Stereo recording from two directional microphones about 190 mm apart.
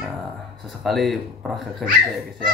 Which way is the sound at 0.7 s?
Centre (ahead or behind).